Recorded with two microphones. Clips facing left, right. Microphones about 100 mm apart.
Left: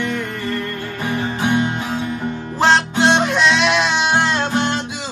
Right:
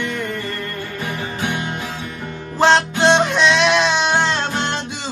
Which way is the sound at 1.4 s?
25° left (ahead or behind).